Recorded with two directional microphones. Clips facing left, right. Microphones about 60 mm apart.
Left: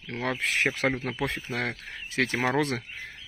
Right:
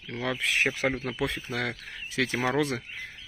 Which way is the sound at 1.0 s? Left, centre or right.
Left.